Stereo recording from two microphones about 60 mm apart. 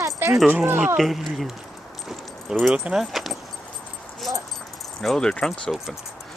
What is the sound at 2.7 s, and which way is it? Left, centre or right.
Speech, centre.